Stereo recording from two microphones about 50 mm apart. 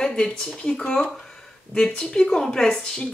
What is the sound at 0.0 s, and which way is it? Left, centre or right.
Speech, centre.